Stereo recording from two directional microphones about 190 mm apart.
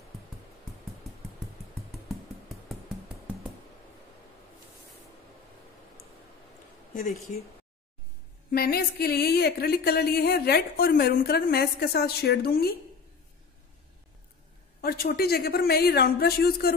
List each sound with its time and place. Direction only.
6.9 s speech: 45° left (ahead or behind)
8.5 s speech: 55° left (ahead or behind)
14.8 s speech: 55° left (ahead or behind)